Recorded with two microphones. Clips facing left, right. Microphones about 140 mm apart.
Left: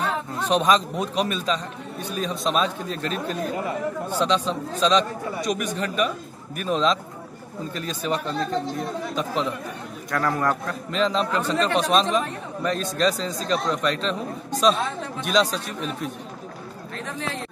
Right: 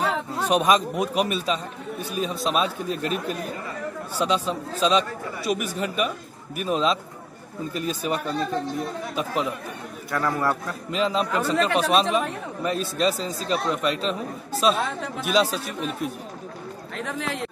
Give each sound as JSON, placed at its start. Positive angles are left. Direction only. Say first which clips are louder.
{"t": 0.4, "sound": "speech", "louder": "even", "side_deg": -10}
{"t": 16.9, "sound": "speech", "louder": "right 1 dB", "side_deg": -90}